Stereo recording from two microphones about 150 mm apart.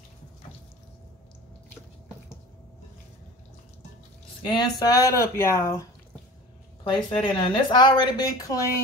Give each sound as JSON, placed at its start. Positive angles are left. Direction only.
{"t": 4.5, "sound": "speech", "side_deg": 30}
{"t": 6.8, "sound": "speech", "side_deg": 35}